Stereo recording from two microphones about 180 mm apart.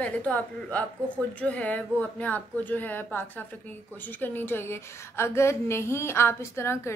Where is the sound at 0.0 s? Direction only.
5° left (ahead or behind).